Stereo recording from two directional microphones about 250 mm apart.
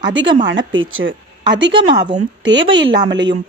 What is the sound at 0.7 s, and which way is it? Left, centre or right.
Speech, right.